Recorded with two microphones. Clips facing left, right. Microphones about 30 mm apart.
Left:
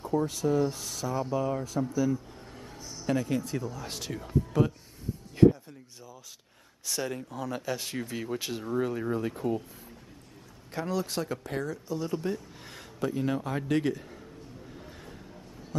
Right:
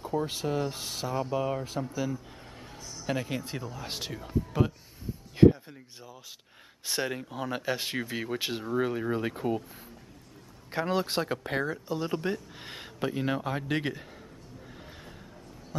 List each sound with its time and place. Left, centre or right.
0.3 s speech: right
1.3 s speech: right
2.0 s a sound: centre
3.1 s speech: right
4.1 s speech: centre
5.3 s speech: right
10.7 s speech: right